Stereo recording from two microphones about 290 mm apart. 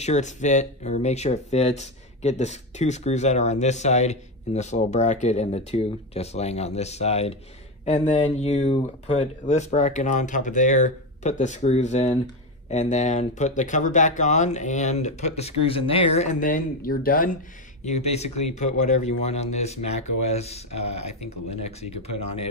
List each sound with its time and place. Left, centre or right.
0.0 s speech: left